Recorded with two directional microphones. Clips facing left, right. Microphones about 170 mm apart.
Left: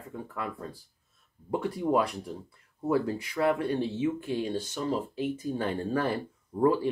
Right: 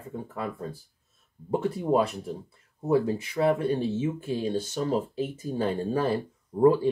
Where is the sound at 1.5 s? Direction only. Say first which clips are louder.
Right 2 dB; 25° right (ahead or behind).